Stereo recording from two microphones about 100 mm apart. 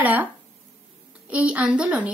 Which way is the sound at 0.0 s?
15° right (ahead or behind).